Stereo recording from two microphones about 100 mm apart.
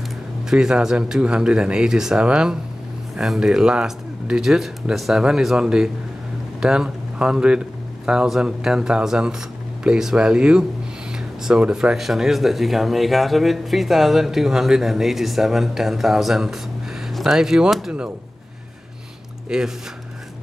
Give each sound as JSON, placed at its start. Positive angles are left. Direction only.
{"t": 0.5, "sound": "speech", "side_deg": -5}
{"t": 17.1, "sound": "music", "side_deg": 0}
{"t": 19.5, "sound": "speech", "side_deg": -5}